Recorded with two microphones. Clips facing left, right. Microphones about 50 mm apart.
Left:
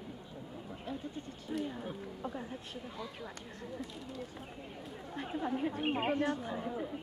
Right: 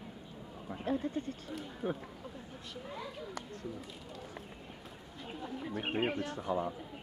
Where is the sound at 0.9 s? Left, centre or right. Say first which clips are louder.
Right 8 dB; right.